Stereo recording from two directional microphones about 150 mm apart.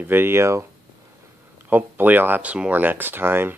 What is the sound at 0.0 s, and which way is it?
Speech, 15° right (ahead or behind).